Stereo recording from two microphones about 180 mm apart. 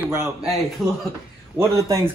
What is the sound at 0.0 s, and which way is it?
Speech, 15° right (ahead or behind).